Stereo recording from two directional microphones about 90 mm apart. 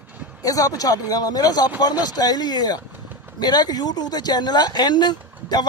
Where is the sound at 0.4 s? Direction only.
40° left (ahead or behind).